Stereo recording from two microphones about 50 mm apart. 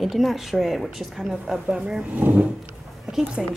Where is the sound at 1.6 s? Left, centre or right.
Centre.